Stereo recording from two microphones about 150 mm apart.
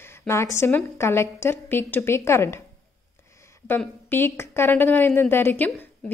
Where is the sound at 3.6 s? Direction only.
15° left (ahead or behind).